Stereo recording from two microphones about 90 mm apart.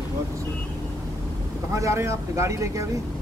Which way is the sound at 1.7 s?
35° right (ahead or behind).